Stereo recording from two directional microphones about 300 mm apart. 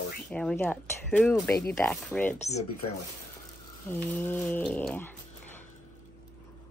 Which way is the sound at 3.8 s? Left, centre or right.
Centre.